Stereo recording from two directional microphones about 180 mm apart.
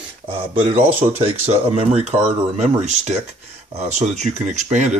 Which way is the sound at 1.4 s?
35° right (ahead or behind).